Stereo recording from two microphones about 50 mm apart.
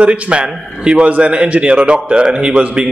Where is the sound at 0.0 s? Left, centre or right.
Right.